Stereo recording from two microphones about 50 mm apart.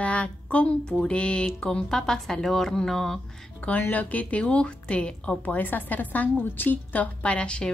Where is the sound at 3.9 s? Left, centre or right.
Left.